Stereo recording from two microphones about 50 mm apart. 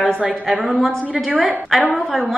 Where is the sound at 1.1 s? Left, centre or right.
Right.